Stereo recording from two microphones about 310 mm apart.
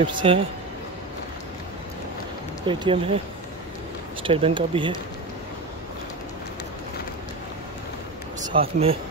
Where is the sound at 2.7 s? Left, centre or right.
Centre.